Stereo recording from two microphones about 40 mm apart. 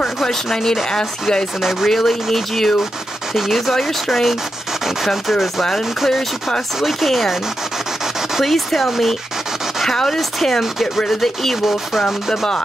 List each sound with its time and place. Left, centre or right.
0.2 s speech: centre
1.6 s speech: centre
6.0 s speech: centre
8.4 s speech: centre